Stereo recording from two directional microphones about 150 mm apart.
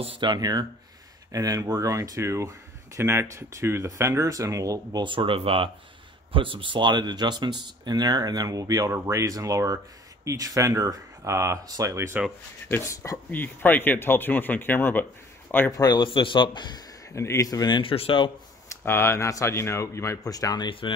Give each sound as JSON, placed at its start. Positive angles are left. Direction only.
{"t": 0.0, "sound": "speech", "side_deg": -35}
{"t": 12.6, "sound": "speech", "side_deg": 15}
{"t": 15.8, "sound": "speech", "side_deg": 30}
{"t": 18.7, "sound": "speech", "side_deg": 15}